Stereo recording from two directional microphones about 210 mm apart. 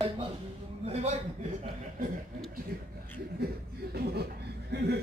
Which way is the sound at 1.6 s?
35° right (ahead or behind).